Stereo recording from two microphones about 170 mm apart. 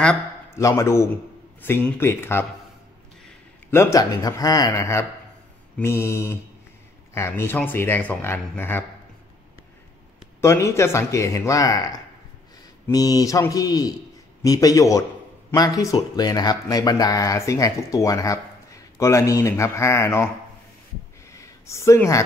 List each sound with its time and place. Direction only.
0.6 s speech: 20° left (ahead or behind)
3.7 s speech: 15° left (ahead or behind)
10.4 s speech: 15° left (ahead or behind)
21.3 s a sound: 15° left (ahead or behind)